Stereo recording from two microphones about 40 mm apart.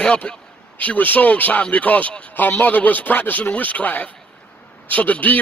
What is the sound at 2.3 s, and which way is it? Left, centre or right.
A man's voice, left.